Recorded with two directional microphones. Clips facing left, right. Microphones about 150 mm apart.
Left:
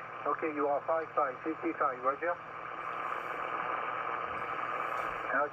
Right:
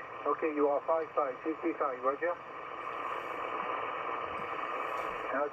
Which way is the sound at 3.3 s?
25° right (ahead or behind).